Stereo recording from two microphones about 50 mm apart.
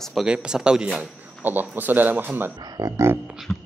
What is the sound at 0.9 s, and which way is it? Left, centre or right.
Speech, right.